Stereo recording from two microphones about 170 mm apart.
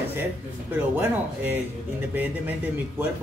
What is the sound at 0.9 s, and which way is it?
A man's voice, 10° right (ahead or behind).